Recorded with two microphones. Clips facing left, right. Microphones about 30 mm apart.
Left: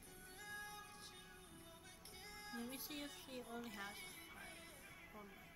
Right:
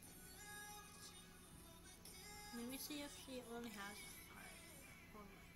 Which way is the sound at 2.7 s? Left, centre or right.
Centre.